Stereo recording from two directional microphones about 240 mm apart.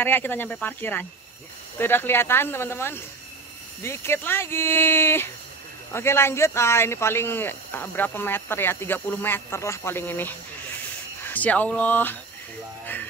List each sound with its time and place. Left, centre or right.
0.0 s speech: centre